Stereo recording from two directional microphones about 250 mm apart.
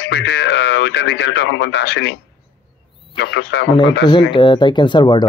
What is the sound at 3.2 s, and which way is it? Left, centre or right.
Speech, left.